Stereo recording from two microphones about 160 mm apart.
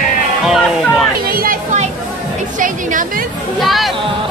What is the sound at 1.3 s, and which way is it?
Music, 65° right (ahead or behind).